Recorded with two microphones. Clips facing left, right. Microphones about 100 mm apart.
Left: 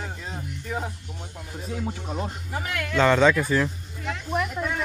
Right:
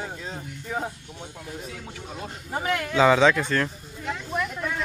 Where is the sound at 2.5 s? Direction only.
30° right (ahead or behind).